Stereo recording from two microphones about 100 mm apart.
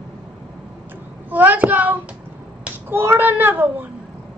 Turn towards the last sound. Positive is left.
turn(degrees=-20)  # may be behind; listen again after turning